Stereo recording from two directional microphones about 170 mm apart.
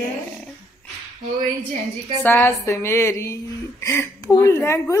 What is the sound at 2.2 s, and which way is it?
A woman's voice, 10° left (ahead or behind).